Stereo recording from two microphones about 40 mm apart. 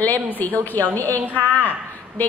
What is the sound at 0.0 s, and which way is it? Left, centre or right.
Speech, left.